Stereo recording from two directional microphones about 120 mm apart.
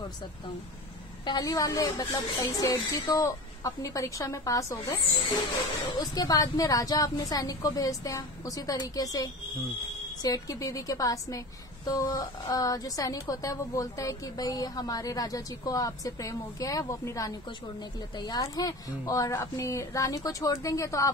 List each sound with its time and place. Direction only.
1.2 s a woman's voice: 35° left (ahead or behind)